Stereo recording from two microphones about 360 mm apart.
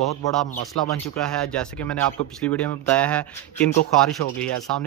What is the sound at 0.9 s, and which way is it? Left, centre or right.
Speech, centre.